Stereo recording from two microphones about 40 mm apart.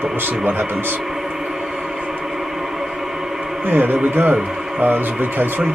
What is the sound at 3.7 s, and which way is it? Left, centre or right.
A man's voice, right.